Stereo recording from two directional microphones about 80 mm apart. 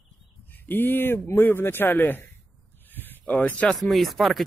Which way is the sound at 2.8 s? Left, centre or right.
Left.